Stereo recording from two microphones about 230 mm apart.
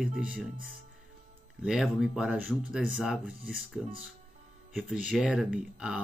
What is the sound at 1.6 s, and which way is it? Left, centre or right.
Speech, centre.